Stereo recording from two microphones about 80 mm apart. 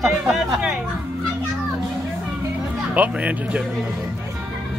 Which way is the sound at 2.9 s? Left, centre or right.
Centre.